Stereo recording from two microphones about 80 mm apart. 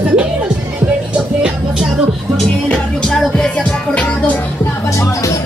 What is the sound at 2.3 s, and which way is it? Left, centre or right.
Music, centre.